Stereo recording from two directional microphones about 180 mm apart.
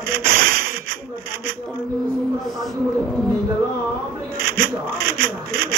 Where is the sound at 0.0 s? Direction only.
55° right (ahead or behind).